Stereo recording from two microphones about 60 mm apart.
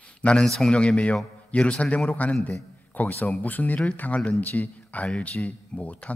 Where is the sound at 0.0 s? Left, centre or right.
Centre.